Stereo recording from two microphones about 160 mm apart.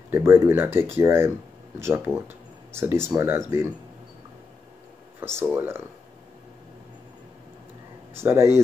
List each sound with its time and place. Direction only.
0.1 s speech: 15° right (ahead or behind)
5.2 s speech: 15° right (ahead or behind)
8.2 s speech: 15° right (ahead or behind)